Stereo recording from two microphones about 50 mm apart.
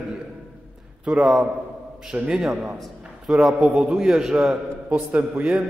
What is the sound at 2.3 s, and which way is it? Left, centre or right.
A man's voice, centre.